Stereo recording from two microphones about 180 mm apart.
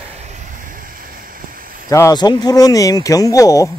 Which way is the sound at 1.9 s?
20° left (ahead or behind).